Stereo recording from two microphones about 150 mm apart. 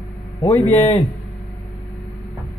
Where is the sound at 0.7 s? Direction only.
45° left (ahead or behind).